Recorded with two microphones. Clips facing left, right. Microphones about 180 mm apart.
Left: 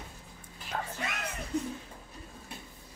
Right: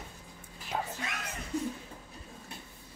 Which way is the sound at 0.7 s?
10° right (ahead or behind).